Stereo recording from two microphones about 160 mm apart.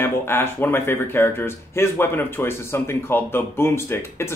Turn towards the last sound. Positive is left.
turn(degrees=15)  # may be behind; listen again after turning